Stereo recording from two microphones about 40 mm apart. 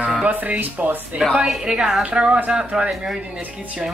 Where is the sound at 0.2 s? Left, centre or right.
Right.